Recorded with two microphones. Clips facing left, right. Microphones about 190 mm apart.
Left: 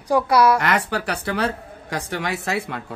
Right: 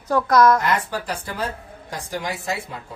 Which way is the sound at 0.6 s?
75° left (ahead or behind).